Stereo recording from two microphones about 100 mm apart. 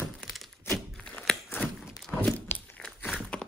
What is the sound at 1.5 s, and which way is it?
Walk, 20° left (ahead or behind).